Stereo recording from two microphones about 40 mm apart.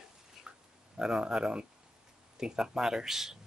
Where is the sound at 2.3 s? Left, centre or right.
Centre.